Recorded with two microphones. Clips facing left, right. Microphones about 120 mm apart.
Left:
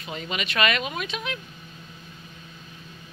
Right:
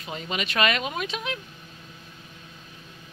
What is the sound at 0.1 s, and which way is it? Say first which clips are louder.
Speech: even; 30° right (ahead or behind).